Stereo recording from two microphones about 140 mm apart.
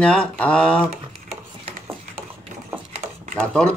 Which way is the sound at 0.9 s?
50° right (ahead or behind).